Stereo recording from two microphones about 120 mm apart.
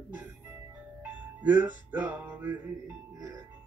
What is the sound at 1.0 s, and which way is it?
Music, 15° right (ahead or behind).